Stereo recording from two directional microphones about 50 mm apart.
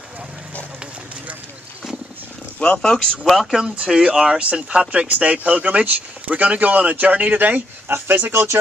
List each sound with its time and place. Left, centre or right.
2.6 s speech: centre
3.3 s speech: centre
3.6 s speech: centre; by 7.6 s right
7.9 s speech: right
8.3 s speech: right